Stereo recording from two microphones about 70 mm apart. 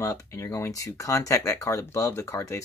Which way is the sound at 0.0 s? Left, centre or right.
Left.